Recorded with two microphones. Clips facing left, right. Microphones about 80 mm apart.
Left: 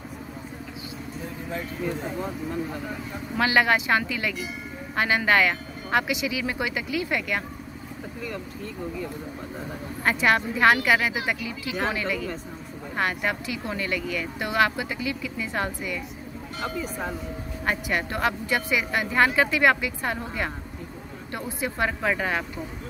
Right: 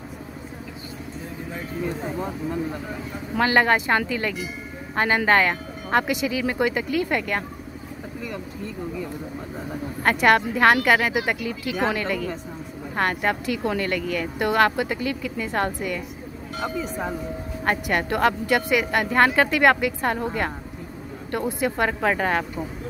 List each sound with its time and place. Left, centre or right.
3.3 s speech: right
10.0 s speech: right
17.6 s speech: right
21.3 s speech: right